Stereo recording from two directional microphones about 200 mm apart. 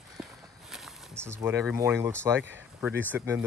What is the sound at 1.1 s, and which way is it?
Speech, 10° right (ahead or behind).